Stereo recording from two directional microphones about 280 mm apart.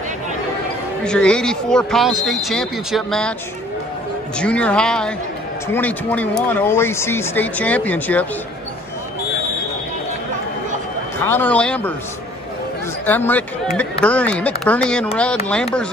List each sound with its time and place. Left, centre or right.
1.0 s speech: centre
4.4 s speech: centre
11.2 s speech: centre
13.0 s speech: centre